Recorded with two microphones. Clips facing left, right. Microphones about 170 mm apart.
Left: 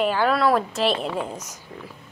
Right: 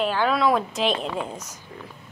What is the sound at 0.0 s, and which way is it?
A woman's voice, 10° left (ahead or behind).